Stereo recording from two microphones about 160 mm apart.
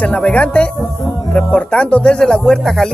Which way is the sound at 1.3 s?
5° left (ahead or behind).